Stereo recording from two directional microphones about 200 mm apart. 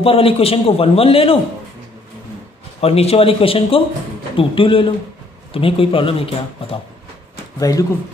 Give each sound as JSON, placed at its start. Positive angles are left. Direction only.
{"t": 0.0, "sound": "a man's voice", "side_deg": 30}
{"t": 2.8, "sound": "a man's voice", "side_deg": 30}
{"t": 7.5, "sound": "speech", "side_deg": 15}